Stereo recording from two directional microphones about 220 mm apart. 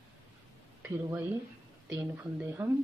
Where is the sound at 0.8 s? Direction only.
10° right (ahead or behind).